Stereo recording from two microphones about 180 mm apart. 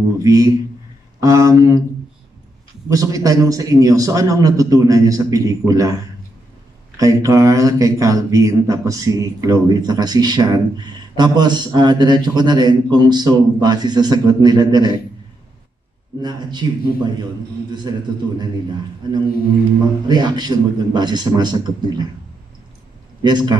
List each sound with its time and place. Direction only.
0.2 s a man's voice: 20° right (ahead or behind)
2.9 s a man's voice: 20° right (ahead or behind)
7.0 s a man's voice: 15° right (ahead or behind)
16.2 s a man's voice: 25° right (ahead or behind)
20.1 s a man's voice: 25° right (ahead or behind)
23.2 s a man's voice: 25° right (ahead or behind)